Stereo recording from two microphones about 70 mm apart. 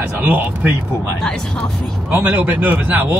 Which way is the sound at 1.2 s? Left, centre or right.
Centre.